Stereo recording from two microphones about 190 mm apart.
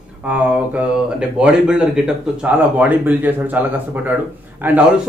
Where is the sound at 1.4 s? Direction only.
5° right (ahead or behind).